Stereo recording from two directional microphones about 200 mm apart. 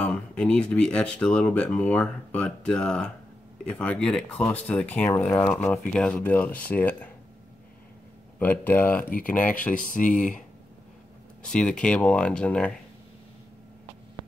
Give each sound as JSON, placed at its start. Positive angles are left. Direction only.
{"t": 0.0, "sound": "speech", "side_deg": 5}
{"t": 8.4, "sound": "speech", "side_deg": 10}
{"t": 9.8, "sound": "speech", "side_deg": 40}
{"t": 11.4, "sound": "speech", "side_deg": 5}